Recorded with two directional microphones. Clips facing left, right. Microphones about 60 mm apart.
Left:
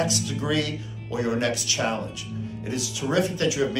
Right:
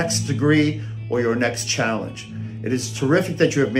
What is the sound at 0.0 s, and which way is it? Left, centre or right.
Speech, right.